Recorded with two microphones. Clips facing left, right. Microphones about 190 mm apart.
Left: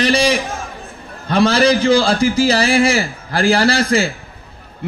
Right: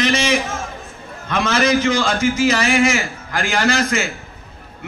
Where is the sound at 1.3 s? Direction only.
35° left (ahead or behind).